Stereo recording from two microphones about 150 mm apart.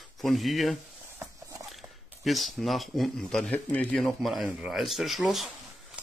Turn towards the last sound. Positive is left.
turn(degrees=0)  # may be behind; listen again after turning